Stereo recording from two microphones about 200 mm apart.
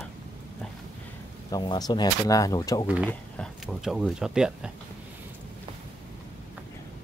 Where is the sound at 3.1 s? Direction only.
5° left (ahead or behind).